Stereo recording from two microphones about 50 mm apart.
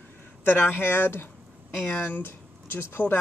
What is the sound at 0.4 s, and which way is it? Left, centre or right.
Speech, left.